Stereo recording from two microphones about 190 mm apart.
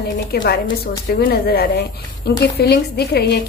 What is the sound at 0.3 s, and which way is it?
A woman's voice, 55° left (ahead or behind).